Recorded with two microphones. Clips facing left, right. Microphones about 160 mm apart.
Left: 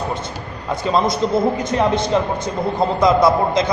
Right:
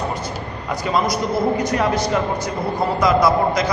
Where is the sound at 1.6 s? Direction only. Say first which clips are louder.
Left 1 dB; 25° left (ahead or behind).